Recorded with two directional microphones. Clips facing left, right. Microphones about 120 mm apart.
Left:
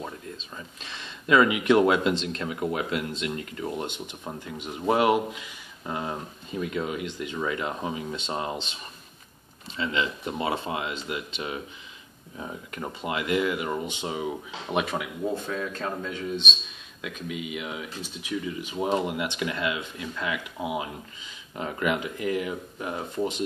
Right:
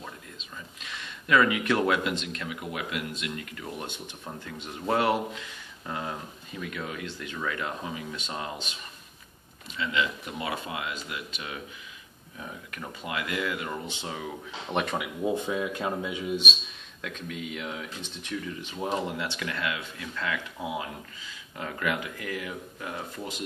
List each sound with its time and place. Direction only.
0.4 s speech: 30° left (ahead or behind)
9.8 s speech: 30° left (ahead or behind)
14.7 s speech: 5° left (ahead or behind)
15.2 s speech: 15° right (ahead or behind)
17.0 s speech: 10° left (ahead or behind)